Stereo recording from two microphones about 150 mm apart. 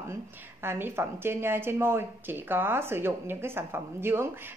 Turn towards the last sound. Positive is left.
turn(degrees=-15)  # may be behind; listen again after turning